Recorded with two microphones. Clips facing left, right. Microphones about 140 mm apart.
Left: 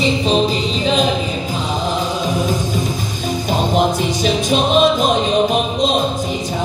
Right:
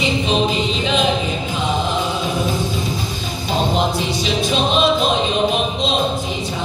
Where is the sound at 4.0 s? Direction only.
50° left (ahead or behind).